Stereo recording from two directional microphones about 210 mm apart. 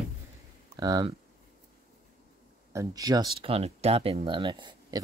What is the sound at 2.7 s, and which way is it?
Speech, 15° right (ahead or behind).